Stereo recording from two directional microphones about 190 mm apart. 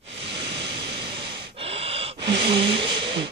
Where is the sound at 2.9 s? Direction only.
25° right (ahead or behind).